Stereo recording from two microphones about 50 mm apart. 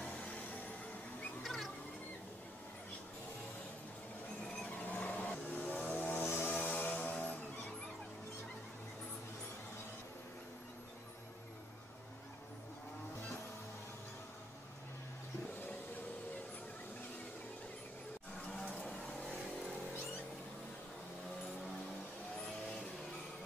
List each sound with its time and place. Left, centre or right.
1.4 s music: centre
4.6 s a sound: left
5.7 s vehicle: left
6.7 s music: left